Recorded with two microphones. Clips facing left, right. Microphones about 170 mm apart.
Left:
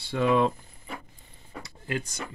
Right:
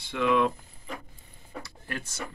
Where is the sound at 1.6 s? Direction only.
15° left (ahead or behind).